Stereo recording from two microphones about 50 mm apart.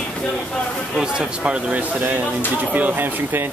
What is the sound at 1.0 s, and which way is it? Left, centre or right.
Speech, centre.